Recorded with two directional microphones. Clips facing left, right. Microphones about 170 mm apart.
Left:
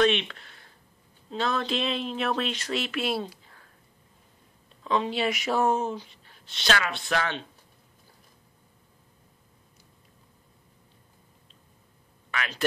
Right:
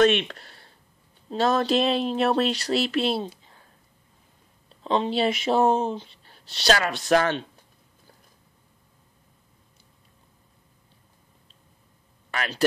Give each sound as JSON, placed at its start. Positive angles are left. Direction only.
{"t": 0.0, "sound": "speech", "side_deg": -45}
{"t": 4.8, "sound": "speech", "side_deg": -30}
{"t": 12.3, "sound": "speech", "side_deg": -35}